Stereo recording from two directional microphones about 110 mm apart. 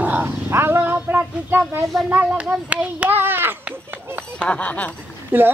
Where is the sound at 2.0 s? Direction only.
10° right (ahead or behind).